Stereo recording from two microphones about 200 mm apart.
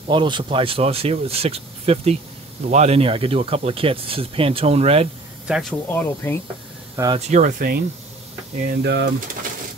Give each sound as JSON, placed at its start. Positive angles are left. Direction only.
{"t": 0.1, "sound": "speech", "side_deg": -25}
{"t": 5.5, "sound": "speech", "side_deg": 0}
{"t": 7.2, "sound": "speech", "side_deg": -35}
{"t": 8.6, "sound": "speech", "side_deg": -60}